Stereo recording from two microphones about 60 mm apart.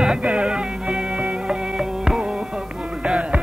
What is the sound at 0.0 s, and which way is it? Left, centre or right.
Music, centre.